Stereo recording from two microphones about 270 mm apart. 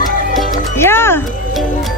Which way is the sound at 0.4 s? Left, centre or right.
Centre.